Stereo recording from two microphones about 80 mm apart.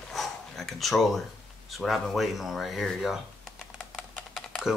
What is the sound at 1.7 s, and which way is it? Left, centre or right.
Speech, centre.